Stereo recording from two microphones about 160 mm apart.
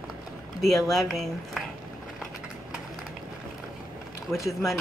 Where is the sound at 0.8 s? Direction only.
Centre (ahead or behind).